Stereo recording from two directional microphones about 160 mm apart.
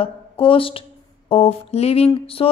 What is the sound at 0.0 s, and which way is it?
A woman's voice, 35° left (ahead or behind).